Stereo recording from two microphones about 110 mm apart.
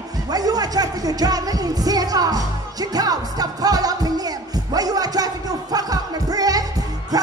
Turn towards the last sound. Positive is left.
turn(degrees=-35)  # may be behind; listen again after turning